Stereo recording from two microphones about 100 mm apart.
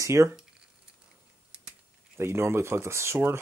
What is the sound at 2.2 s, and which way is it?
Speech, 25° right (ahead or behind).